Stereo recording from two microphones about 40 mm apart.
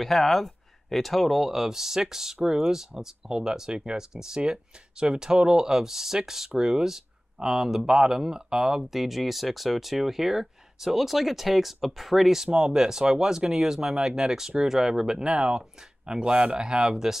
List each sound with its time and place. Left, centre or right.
0.0 s speech: centre
15.3 s speech: right